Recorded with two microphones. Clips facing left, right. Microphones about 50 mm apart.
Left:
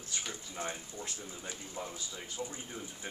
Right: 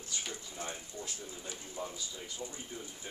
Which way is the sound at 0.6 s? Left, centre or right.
Left.